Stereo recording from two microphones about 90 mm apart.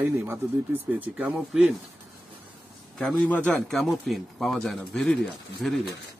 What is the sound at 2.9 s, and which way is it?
Speech, 15° left (ahead or behind).